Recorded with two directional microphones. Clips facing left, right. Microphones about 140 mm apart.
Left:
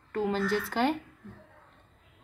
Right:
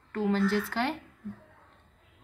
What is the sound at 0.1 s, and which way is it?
Speech, 15° left (ahead or behind).